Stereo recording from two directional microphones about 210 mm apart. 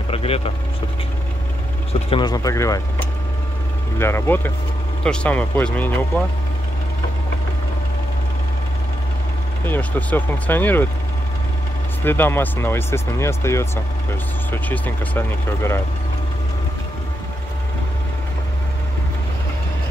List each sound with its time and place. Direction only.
0.1 s vehicle: 30° left (ahead or behind)
2.0 s speech: 25° left (ahead or behind); by 5.9 s 5° left (ahead or behind)
9.7 s speech: 5° left (ahead or behind)
12.0 s speech: 10° left (ahead or behind)